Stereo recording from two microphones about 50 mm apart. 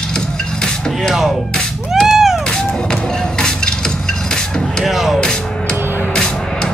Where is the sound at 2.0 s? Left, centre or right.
Centre.